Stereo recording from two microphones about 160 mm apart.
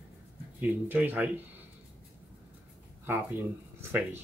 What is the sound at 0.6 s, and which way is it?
Speech, 10° right (ahead or behind).